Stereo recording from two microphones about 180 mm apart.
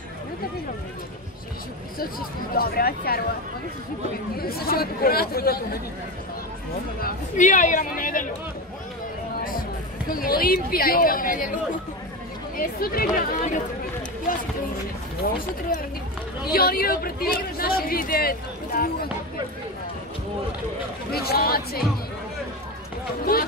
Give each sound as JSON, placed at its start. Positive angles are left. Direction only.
{"t": 2.0, "sound": "speech", "side_deg": 55}
{"t": 4.4, "sound": "speech", "side_deg": 60}
{"t": 7.0, "sound": "speech", "side_deg": 50}
{"t": 9.4, "sound": "speech", "side_deg": 50}
{"t": 12.5, "sound": "speech", "side_deg": 55}
{"t": 21.1, "sound": "speech", "side_deg": 60}
{"t": 23.3, "sound": "speech", "side_deg": 55}